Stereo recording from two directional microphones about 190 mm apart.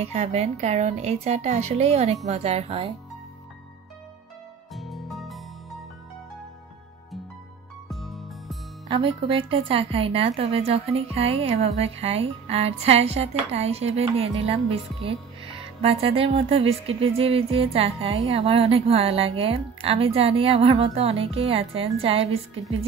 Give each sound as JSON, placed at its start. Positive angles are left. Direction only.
{"t": 0.0, "sound": "speech", "side_deg": -35}
{"t": 4.7, "sound": "music", "side_deg": 0}
{"t": 7.9, "sound": "music", "side_deg": 0}
{"t": 8.8, "sound": "speech", "side_deg": -25}